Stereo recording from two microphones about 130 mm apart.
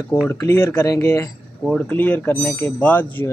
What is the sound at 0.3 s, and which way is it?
Speech, 20° left (ahead or behind).